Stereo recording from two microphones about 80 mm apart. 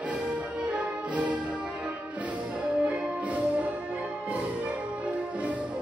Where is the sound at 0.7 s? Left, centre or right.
Centre.